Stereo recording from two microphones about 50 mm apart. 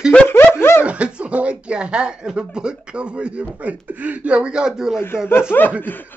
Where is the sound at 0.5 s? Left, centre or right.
Left.